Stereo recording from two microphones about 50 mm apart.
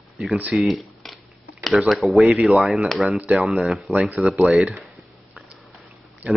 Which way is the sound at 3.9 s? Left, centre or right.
Right.